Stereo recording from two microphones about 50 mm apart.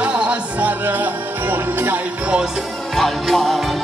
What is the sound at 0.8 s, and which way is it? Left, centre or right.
Music, right.